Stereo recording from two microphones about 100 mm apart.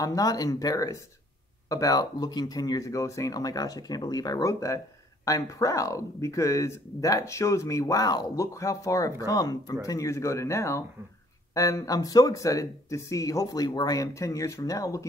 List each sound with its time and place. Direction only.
0.0 s speech: 35° left (ahead or behind)